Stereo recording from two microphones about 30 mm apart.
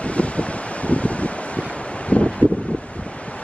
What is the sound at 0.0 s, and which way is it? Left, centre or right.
Wind, left.